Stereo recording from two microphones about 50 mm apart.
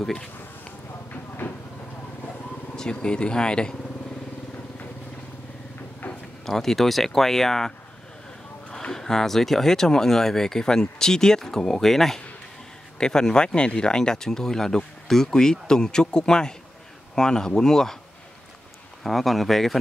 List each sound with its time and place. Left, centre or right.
1.4 s vehicle: left
2.7 s speech: centre
6.0 s a sound: left
6.4 s speech: centre
8.6 s a sound: left
8.9 s speech: centre
19.0 s speech: centre